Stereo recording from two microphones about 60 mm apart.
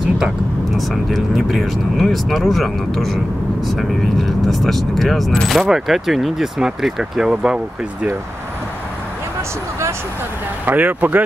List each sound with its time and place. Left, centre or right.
0.7 s speech: centre
10.6 s speech: right